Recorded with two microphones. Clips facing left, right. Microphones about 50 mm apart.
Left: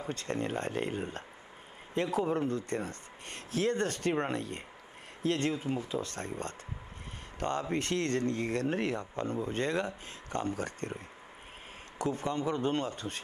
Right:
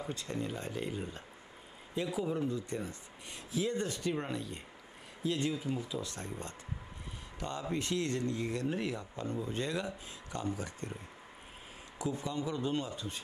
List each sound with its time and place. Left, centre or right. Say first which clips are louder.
0.1 s a man's voice: left 7 dB; left
12.0 s speech: left 4 dB; left